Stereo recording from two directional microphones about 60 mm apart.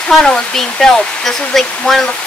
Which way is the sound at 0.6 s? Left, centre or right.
Centre.